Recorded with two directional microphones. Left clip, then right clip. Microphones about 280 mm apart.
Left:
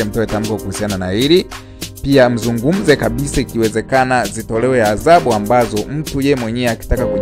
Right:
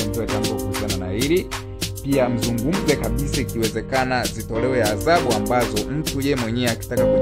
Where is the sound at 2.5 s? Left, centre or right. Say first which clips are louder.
Left 7 dB; centre.